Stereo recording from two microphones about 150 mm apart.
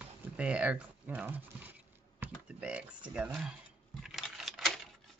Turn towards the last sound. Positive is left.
turn(degrees=0)  # may be behind; listen again after turning